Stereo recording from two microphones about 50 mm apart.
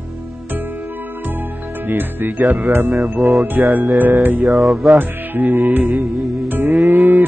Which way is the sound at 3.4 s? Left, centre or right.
Right.